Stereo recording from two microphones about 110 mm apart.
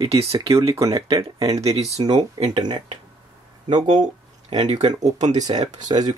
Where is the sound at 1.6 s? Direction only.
70° right (ahead or behind).